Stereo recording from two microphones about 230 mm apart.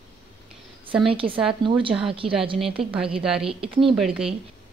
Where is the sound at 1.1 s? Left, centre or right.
Right.